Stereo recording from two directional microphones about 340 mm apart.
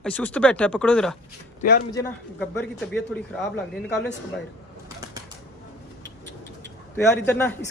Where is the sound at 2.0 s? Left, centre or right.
Centre.